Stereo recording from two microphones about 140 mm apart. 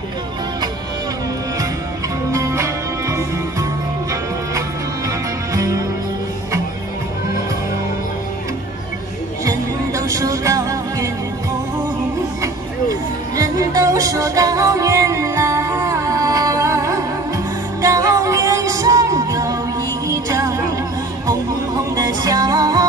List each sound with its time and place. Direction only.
2.3 s music: 20° right (ahead or behind)
5.5 s music: 20° right (ahead or behind)
9.4 s music: 20° right (ahead or behind)
13.4 s music: 25° right (ahead or behind)
21.9 s music: 25° right (ahead or behind)